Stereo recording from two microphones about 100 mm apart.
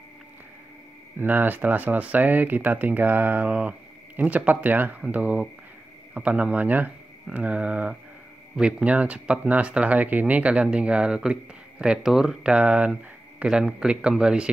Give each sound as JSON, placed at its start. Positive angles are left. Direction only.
{"t": 1.1, "sound": "speech", "side_deg": -20}